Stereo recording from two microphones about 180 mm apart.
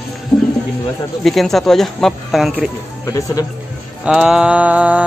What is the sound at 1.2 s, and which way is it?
Speech, centre (ahead or behind).